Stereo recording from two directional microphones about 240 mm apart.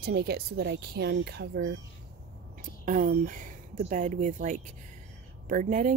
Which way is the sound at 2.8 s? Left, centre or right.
Right.